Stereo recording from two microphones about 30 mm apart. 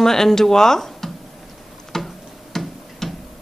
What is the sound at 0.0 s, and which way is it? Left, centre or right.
Speech, centre.